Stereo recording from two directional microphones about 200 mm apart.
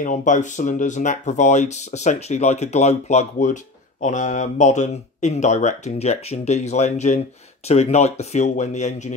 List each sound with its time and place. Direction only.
0.0 s speech: 40° left (ahead or behind)